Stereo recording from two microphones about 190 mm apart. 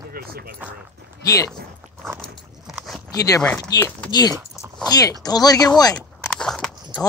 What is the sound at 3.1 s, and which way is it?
Speech, 20° left (ahead or behind).